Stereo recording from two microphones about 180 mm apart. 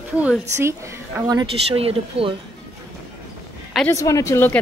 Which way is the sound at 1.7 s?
30° right (ahead or behind).